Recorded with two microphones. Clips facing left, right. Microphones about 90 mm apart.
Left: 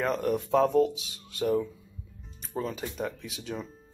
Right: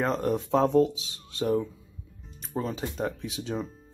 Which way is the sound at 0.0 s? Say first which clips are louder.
Right 1 dB; 25° right (ahead or behind).